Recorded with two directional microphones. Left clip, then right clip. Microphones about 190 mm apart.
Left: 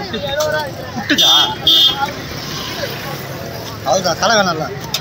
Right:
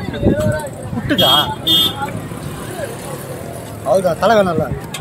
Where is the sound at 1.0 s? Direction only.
55° right (ahead or behind).